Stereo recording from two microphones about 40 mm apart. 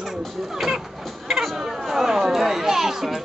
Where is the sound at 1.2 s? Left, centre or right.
Centre.